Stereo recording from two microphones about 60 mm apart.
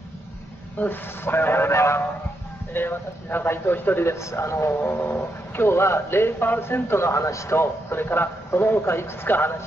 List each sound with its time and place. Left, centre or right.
0.7 s a man's voice: left
2.7 s a man's voice: left
4.8 s speech: left
7.5 s a man's voice: left